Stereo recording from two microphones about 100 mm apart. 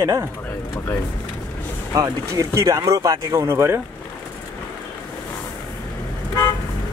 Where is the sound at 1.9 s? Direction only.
35° right (ahead or behind).